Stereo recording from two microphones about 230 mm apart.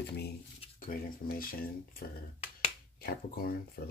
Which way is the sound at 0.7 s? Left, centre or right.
Left.